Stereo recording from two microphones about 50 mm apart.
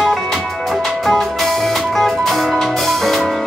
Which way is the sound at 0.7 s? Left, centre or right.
Centre.